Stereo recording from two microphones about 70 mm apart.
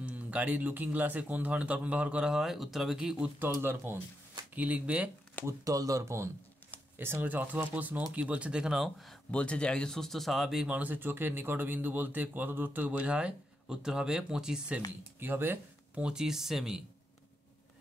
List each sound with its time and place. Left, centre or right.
0.0 s speech: right
3.6 s speech: right
4.6 s speech: right
5.5 s speech: right
7.0 s speech: right; by 9.1 s centre
9.3 s speech: centre
10.7 s speech: right
14.9 s speech: right
15.9 s speech: centre